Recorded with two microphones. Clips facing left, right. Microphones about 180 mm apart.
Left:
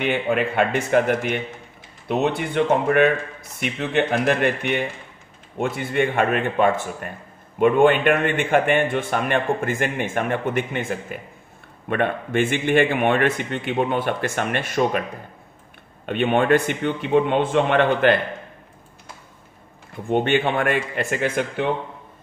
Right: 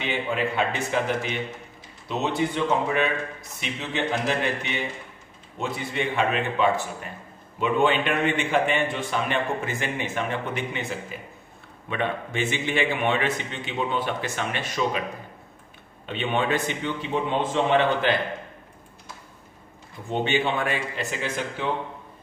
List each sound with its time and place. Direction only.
0.0 s a man's voice: 55° left (ahead or behind)
16.1 s a man's voice: 55° left (ahead or behind)
20.1 s a man's voice: 55° left (ahead or behind)